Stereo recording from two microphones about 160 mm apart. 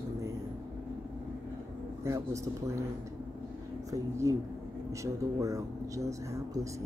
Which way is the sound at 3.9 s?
20° right (ahead or behind).